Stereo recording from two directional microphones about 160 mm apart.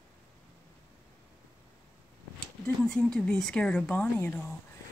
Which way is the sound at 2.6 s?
5° left (ahead or behind).